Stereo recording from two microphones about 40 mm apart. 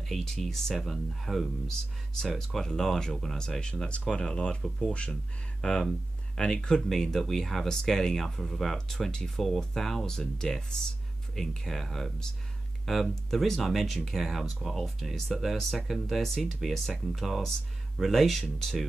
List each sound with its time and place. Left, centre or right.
0.0 s speech: centre
1.7 s speech: centre; by 5.1 s left
5.6 s speech: centre
6.9 s speech: centre
17.1 s speech: centre